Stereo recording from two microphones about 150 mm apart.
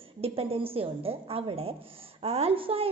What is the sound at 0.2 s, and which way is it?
A woman's voice, 40° right (ahead or behind).